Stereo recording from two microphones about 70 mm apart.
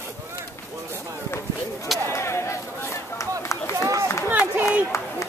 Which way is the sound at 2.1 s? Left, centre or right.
Left.